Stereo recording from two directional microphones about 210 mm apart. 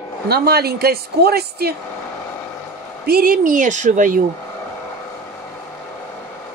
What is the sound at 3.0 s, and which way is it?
A woman's voice, 45° right (ahead or behind).